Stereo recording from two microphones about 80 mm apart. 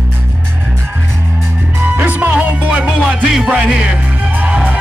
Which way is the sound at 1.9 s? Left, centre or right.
Right.